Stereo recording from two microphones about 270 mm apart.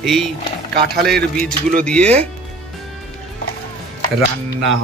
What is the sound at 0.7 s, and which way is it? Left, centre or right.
Speech, right.